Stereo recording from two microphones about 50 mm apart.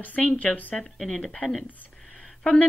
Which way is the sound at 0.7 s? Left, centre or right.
Centre.